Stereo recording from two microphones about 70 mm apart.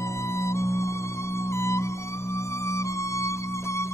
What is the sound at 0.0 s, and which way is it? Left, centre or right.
Music, left.